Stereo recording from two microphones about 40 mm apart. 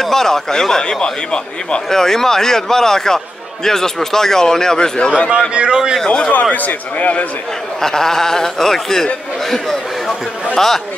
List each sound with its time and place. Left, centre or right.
0.0 s a man's voice: centre; by 5.3 s left
5.5 s a man's voice: right
6.0 s a man's voice: left
6.5 s a man's voice: left
7.8 s a man's voice: centre